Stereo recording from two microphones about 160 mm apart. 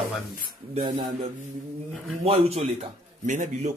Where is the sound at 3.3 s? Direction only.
50° right (ahead or behind).